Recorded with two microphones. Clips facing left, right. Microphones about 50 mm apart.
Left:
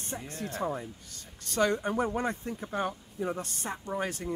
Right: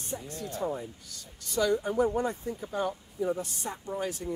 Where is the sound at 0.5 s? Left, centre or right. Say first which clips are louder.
Even; left.